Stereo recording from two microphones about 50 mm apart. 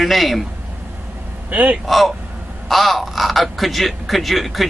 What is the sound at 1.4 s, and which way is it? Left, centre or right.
Speech, right.